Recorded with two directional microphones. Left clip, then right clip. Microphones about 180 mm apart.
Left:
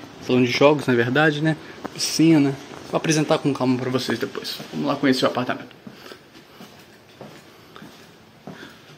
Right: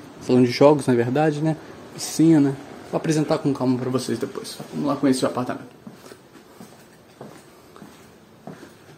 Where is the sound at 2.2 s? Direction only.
15° right (ahead or behind).